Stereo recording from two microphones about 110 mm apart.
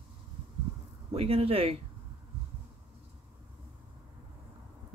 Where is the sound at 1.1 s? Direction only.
65° right (ahead or behind).